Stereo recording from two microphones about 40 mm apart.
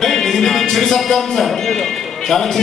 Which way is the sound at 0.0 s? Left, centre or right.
Centre.